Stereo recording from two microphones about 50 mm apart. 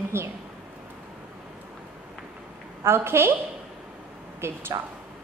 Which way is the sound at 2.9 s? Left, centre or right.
Right.